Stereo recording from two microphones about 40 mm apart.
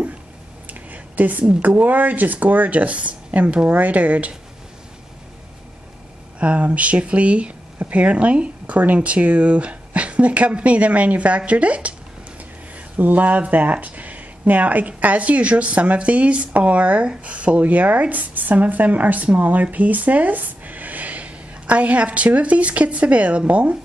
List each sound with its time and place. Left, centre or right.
0.7 s a sound: right
1.8 s speech: right
6.4 s speech: right
12.7 s speech: right